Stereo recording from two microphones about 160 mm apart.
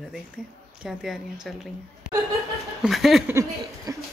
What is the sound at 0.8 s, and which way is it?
Speech, centre (ahead or behind).